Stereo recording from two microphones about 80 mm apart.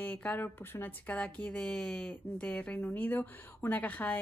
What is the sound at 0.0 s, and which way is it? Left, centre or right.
A woman's voice, centre.